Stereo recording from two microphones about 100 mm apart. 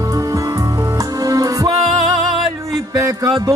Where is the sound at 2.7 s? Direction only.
35° right (ahead or behind).